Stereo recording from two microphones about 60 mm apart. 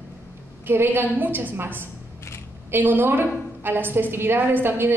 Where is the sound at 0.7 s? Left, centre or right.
Right.